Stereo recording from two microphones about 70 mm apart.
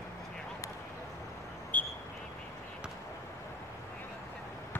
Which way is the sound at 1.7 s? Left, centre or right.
Left.